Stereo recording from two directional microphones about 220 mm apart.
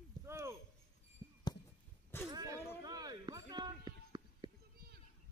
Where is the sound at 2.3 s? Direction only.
15° right (ahead or behind).